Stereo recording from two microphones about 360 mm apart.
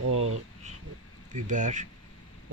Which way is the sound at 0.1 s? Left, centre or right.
Right.